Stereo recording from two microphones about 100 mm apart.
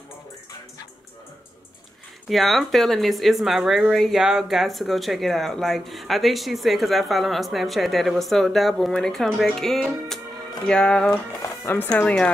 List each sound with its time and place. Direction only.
2.2 s speech: centre (ahead or behind)
11.6 s speech: 20° left (ahead or behind)